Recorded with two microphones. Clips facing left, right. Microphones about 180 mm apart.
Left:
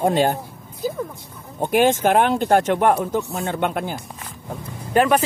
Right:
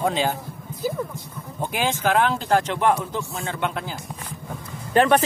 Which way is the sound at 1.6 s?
55° left (ahead or behind).